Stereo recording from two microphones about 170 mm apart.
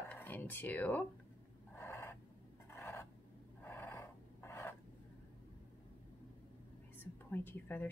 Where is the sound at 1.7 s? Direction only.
15° left (ahead or behind).